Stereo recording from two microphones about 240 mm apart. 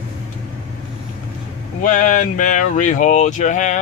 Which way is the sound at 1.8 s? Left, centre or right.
Left.